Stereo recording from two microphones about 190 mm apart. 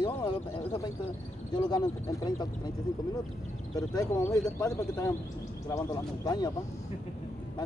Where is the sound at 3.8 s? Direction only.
20° left (ahead or behind).